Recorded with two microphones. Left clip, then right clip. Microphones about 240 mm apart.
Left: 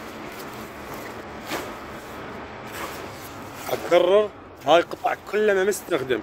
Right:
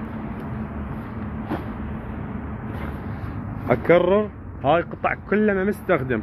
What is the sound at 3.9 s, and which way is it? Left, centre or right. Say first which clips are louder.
Speech: left 1 dB; left.